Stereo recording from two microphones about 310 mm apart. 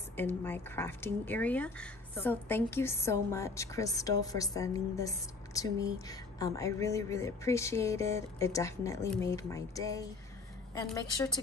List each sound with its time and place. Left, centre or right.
0.1 s a woman's voice: centre